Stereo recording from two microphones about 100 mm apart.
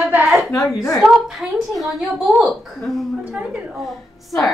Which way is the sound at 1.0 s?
5° right (ahead or behind).